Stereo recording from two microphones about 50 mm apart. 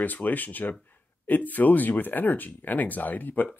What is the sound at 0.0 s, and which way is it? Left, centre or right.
Speech, left.